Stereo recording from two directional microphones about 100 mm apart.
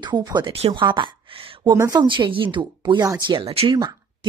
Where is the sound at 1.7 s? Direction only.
40° right (ahead or behind).